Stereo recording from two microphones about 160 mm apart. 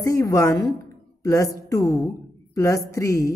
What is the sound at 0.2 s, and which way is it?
A woman's voice, 20° left (ahead or behind).